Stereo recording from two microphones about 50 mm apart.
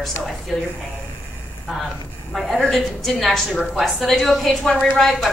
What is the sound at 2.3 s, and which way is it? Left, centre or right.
A woman's voice, centre.